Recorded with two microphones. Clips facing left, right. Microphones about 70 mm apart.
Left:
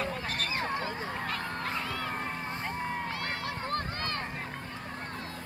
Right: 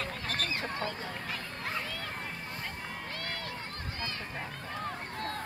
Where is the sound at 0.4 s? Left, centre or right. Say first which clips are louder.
Left 2 dB; left.